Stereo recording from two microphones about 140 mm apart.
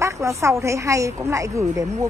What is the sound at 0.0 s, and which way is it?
A woman's voice, 20° right (ahead or behind).